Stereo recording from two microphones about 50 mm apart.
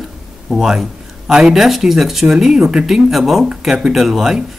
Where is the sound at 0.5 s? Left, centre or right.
Centre.